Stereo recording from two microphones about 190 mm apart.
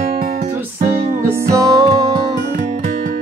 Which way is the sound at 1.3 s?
20° right (ahead or behind).